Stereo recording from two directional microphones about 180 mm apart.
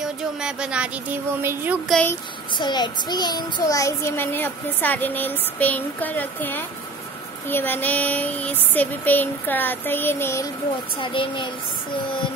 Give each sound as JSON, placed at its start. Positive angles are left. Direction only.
{"t": 0.0, "sound": "speech", "side_deg": -5}
{"t": 1.9, "sound": "a child's voice", "side_deg": 5}
{"t": 2.5, "sound": "a child's voice", "side_deg": 25}
{"t": 11.0, "sound": "speech", "side_deg": 30}